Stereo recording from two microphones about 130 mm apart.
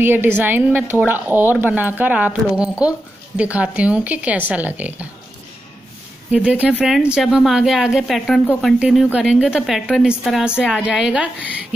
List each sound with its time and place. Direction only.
0.0 s speech: 15° right (ahead or behind)
6.3 s a woman's voice: 10° right (ahead or behind)